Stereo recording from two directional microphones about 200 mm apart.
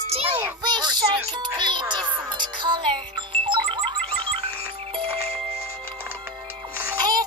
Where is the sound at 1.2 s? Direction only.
20° right (ahead or behind).